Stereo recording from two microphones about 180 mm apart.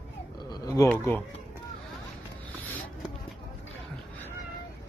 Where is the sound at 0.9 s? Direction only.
10° left (ahead or behind).